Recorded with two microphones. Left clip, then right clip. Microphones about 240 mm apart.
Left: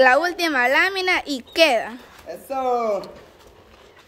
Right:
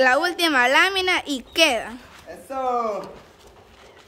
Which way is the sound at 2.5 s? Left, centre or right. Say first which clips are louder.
Left 2 dB; left.